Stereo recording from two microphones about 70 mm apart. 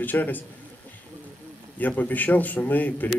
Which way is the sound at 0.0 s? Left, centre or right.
Left.